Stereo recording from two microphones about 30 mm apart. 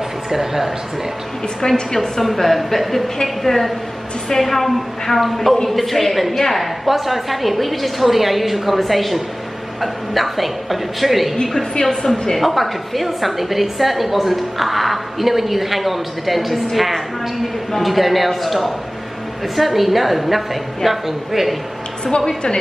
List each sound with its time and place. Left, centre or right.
0.3 s speech: centre
1.6 s a woman's voice: centre
2.0 s a woman's voice: centre
11.7 s a woman's voice: left
12.4 s a woman's voice: centre
22.0 s a woman's voice: left